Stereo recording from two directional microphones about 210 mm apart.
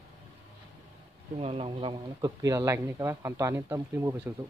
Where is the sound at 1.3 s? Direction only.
30° right (ahead or behind); by 4.3 s 15° right (ahead or behind).